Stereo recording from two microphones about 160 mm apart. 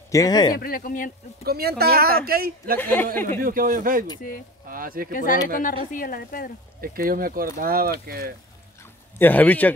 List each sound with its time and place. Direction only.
0.1 s speech: 20° left (ahead or behind)
0.6 s a woman's voice: 65° left (ahead or behind)
1.4 s speech: 75° right (ahead or behind)
2.8 s a man's voice: 15° left (ahead or behind)
3.4 s speech: 60° right (ahead or behind)
5.1 s a woman's voice: 55° left (ahead or behind)
6.8 s speech: 65° right (ahead or behind)
9.2 s a man's voice: 10° left (ahead or behind)